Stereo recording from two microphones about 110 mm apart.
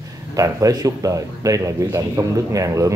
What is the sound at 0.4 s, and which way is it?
A man's voice, 30° right (ahead or behind).